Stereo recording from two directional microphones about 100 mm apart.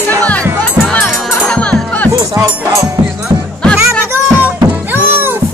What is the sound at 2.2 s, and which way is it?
Music, 35° right (ahead or behind).